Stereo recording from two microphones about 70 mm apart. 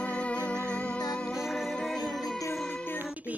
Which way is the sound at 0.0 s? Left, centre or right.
Centre.